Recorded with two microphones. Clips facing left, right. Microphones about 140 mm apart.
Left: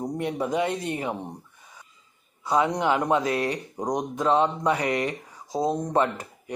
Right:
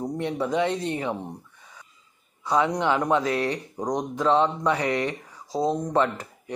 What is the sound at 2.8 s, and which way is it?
Speech, 15° left (ahead or behind).